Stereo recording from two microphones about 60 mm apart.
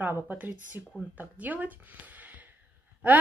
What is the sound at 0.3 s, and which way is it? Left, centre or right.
Speech, right.